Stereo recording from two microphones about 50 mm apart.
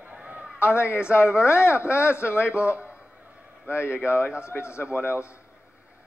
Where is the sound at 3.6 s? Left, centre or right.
Left.